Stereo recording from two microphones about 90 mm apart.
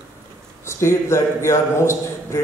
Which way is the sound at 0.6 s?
30° left (ahead or behind).